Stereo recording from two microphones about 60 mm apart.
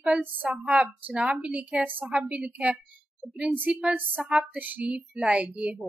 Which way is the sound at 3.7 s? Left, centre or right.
Centre.